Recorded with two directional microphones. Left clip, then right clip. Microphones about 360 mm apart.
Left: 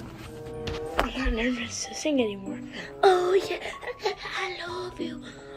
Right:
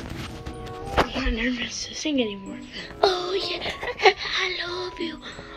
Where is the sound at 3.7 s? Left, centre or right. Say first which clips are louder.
Right 11 dB; centre.